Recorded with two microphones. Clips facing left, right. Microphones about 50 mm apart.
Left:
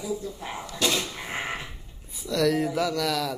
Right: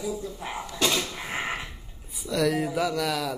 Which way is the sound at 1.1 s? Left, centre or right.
Centre.